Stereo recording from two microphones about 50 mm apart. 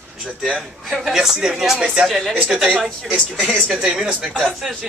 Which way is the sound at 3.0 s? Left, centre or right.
Right.